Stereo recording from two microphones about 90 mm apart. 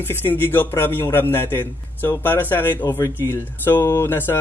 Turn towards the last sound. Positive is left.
turn(degrees=25)  # may be behind; listen again after turning